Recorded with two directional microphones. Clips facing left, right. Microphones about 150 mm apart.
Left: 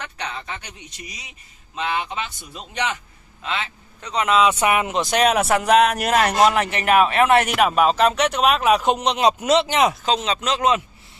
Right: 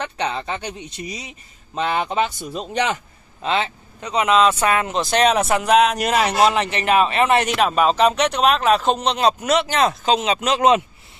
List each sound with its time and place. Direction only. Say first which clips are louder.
0.0 s speech: right 7 dB; 25° right (ahead or behind)
4.0 s speech: right 2 dB; 10° right (ahead or behind)
4.4 s speech: left 1 dB; 15° left (ahead or behind)
10.0 s speech: right 3 dB; 5° right (ahead or behind)